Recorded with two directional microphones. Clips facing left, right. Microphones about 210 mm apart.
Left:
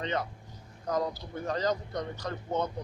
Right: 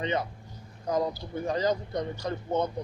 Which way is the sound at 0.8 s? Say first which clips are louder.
Right 3 dB; 10° right (ahead or behind).